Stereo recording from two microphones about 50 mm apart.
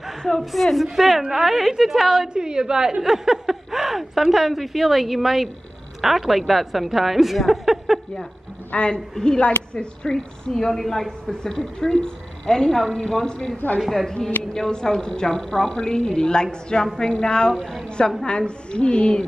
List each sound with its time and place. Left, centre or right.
0.2 s a woman's voice: centre
8.7 s a woman's voice: centre
10.4 s a woman's voice: centre